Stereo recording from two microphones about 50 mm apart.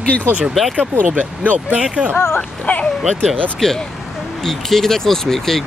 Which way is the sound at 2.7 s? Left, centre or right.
Left.